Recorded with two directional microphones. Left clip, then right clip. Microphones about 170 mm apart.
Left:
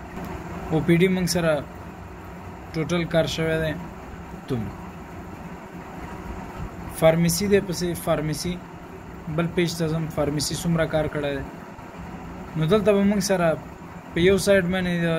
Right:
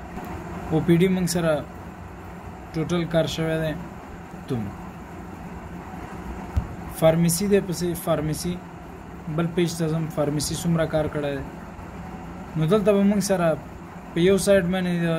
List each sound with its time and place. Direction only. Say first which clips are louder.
0.7 s speech: even; 10° right (ahead or behind)
2.7 s speech: left 1 dB; 10° right (ahead or behind)
7.0 s speech: left 1 dB; 10° right (ahead or behind)
12.5 s speech: even; 10° right (ahead or behind)